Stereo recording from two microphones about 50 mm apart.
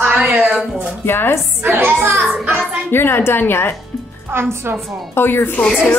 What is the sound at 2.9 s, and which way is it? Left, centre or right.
Speech, left.